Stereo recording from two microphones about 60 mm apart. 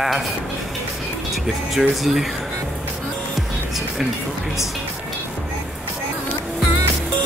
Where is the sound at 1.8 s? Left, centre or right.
Centre.